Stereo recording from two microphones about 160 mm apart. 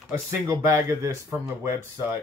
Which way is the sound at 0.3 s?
15° right (ahead or behind).